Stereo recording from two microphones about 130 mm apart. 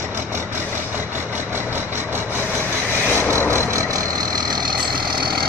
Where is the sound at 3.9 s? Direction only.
30° right (ahead or behind).